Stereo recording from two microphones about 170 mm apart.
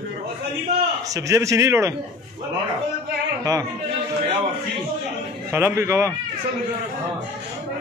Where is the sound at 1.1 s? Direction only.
20° right (ahead or behind).